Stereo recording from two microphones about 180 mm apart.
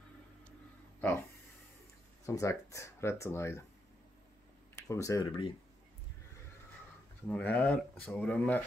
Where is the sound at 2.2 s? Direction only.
15° left (ahead or behind).